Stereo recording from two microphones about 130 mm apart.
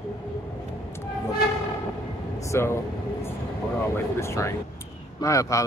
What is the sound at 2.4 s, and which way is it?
Speech, 20° left (ahead or behind).